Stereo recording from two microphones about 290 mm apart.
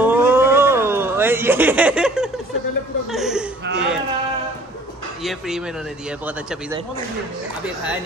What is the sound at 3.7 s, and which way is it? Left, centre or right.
Speech, right.